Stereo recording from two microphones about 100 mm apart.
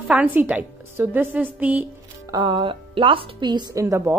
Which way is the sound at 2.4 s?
55° right (ahead or behind).